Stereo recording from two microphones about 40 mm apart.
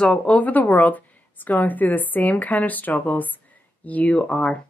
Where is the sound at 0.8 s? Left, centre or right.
Left.